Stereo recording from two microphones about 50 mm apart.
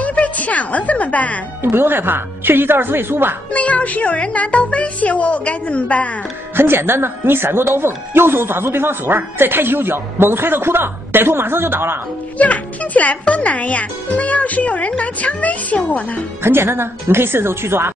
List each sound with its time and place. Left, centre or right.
0.0 s music: left
1.6 s speech: right
3.5 s speech: left
6.5 s speech: right
12.4 s a child's voice: left
16.4 s speech: right